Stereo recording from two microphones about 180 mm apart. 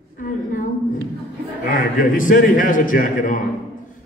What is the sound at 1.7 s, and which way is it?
A man's voice, 50° left (ahead or behind).